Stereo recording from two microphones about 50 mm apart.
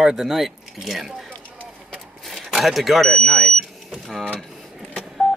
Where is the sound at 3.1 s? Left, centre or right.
Centre.